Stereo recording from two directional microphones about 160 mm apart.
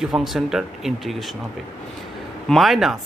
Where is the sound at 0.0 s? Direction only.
Centre (ahead or behind).